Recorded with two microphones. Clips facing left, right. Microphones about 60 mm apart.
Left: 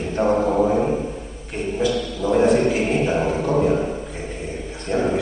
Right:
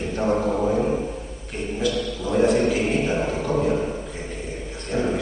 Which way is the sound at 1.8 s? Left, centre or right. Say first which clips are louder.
Left 3 dB; centre.